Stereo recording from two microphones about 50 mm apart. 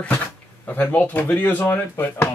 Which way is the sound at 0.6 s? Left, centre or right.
Left.